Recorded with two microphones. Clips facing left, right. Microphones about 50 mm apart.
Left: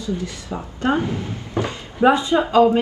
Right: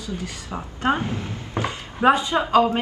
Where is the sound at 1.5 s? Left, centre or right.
Right.